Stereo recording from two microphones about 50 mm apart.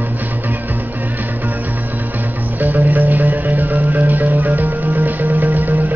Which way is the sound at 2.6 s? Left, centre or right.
Right.